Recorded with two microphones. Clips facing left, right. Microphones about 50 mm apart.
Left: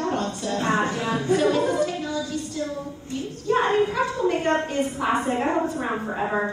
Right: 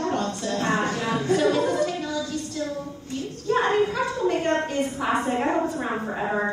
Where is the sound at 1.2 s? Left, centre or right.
Left.